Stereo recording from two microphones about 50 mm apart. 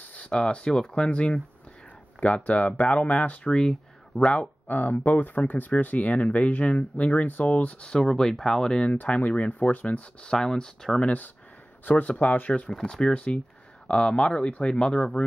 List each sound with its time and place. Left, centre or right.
0.0 s a sound: left
0.3 s speech: centre
3.4 s speech: centre
4.6 s speech: left
7.9 s speech: centre
8.9 s speech: left
10.3 s speech: centre
11.0 s speech: left
12.6 s speech: centre